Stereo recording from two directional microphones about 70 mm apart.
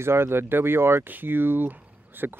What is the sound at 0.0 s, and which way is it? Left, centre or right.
Speech, right.